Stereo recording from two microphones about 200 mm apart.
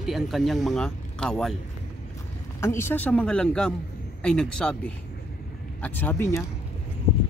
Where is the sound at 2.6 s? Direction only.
10° left (ahead or behind).